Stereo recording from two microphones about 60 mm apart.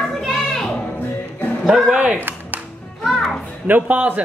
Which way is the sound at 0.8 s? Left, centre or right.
Left.